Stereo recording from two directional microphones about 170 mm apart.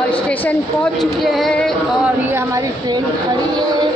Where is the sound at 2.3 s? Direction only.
20° right (ahead or behind).